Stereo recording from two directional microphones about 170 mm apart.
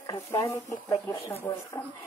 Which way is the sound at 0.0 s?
20° left (ahead or behind).